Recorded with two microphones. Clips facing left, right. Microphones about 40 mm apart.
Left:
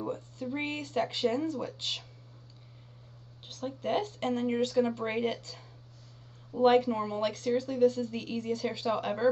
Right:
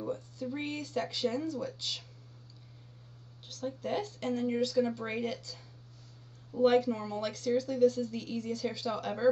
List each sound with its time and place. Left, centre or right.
0.0 s a sound: left
0.5 s speech: left
3.4 s speech: left